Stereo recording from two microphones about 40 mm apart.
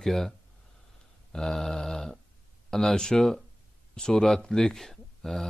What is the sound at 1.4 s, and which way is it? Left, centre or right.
Speech, centre.